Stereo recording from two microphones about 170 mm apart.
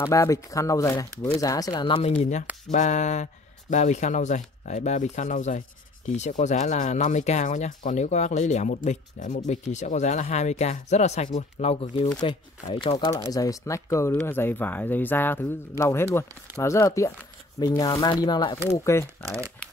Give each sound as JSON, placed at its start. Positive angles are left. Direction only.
{"t": 0.0, "sound": "speech", "side_deg": 15}
{"t": 2.7, "sound": "speech", "side_deg": 45}
{"t": 19.2, "sound": "speech", "side_deg": -20}